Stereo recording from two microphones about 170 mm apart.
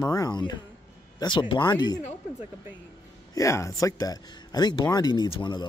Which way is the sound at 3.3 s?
15° left (ahead or behind).